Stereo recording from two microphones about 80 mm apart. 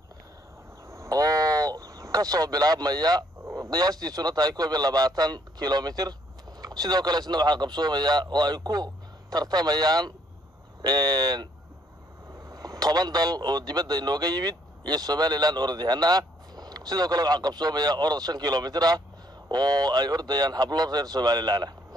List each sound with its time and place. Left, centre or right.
0.8 s a sound: right
4.0 s speech: right
12.4 s a man's voice: right